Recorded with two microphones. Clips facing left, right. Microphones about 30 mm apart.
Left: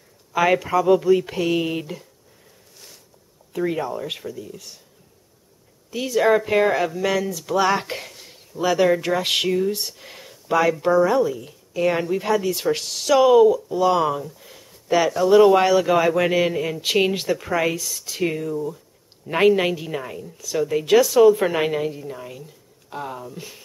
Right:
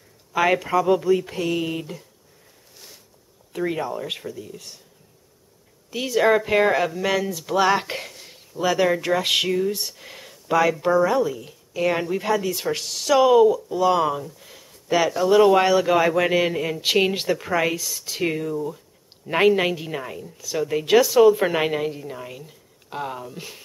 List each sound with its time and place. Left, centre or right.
0.3 s speech: centre
1.3 s speech: centre
1.6 s speech: left
3.5 s speech: centre
5.9 s a woman's voice: centre